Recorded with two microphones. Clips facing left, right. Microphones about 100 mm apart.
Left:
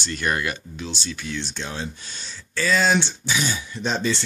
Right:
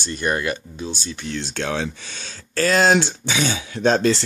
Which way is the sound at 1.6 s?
90° right.